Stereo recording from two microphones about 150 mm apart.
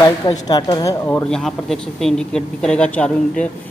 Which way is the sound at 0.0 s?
25° left (ahead or behind).